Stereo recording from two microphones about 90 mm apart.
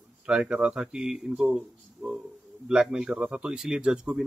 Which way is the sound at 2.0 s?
25° right (ahead or behind).